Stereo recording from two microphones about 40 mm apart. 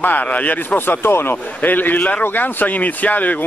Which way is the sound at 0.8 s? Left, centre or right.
Left.